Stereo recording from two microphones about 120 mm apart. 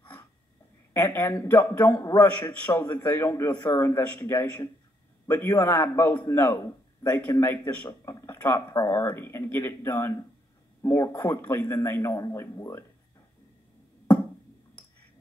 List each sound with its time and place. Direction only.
0.9 s a man's voice: 20° left (ahead or behind)
2.9 s a man's voice: 20° left (ahead or behind)